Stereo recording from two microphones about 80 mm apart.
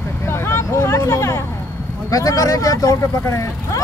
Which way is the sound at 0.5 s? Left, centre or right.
Left.